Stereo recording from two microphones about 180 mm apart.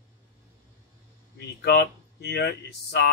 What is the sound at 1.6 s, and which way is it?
A man's voice, 60° left (ahead or behind).